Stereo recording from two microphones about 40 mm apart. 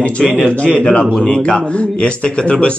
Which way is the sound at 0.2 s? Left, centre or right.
Centre.